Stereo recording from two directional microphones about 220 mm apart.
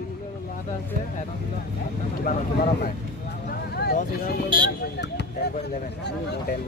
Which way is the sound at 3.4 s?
45° left (ahead or behind).